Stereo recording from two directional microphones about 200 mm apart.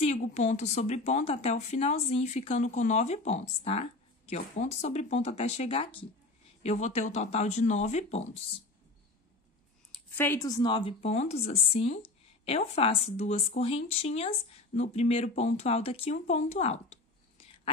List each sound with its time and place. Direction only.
0.0 s a woman's voice: 35° left (ahead or behind)
9.9 s a woman's voice: 10° left (ahead or behind); by 16.7 s 35° left (ahead or behind)